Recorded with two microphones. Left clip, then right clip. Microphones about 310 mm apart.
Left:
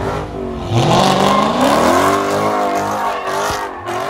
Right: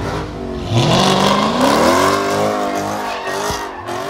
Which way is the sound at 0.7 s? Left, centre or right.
Centre.